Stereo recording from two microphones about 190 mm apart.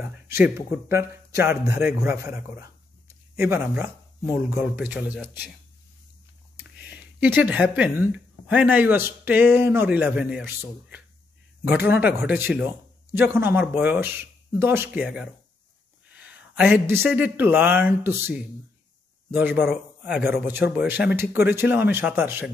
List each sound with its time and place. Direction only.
0.0 s speech: 10° right (ahead or behind)
6.5 s a sound: 10° right (ahead or behind)
7.7 s speech: 10° right (ahead or behind)